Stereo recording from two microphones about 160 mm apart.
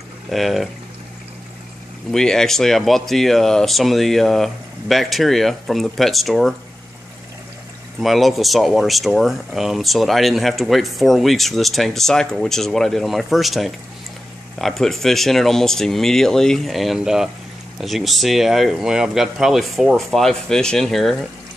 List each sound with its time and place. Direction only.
0.3 s speech: centre (ahead or behind)
2.1 s speech: 5° left (ahead or behind)
8.0 s speech: centre (ahead or behind)